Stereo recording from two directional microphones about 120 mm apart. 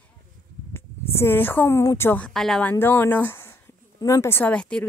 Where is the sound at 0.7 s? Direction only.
20° left (ahead or behind).